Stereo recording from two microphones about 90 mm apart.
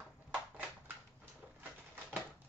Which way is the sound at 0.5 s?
20° right (ahead or behind).